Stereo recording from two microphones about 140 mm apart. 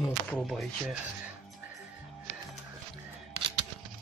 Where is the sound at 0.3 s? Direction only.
5° left (ahead or behind).